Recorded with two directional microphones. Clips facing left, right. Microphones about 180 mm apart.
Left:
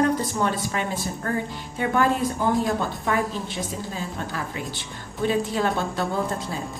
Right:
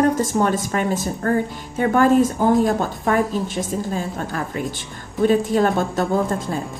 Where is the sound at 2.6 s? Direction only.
45° right (ahead or behind).